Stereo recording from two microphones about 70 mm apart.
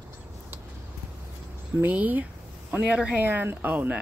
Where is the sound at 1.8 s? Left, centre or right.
Right.